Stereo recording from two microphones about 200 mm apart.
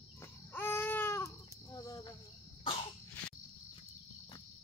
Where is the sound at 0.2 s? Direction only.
10° left (ahead or behind).